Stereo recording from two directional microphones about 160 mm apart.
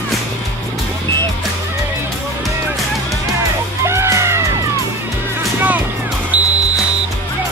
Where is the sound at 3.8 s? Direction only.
15° right (ahead or behind).